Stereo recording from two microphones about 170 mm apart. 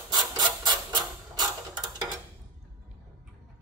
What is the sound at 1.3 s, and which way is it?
Mechanisms, 25° right (ahead or behind).